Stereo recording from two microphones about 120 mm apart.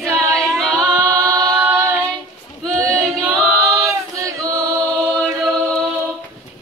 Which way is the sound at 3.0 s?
Centre (ahead or behind).